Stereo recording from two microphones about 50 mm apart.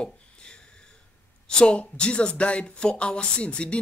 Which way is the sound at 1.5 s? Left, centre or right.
Centre.